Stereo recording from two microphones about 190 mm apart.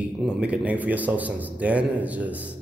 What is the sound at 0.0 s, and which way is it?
A man's voice, 5° right (ahead or behind).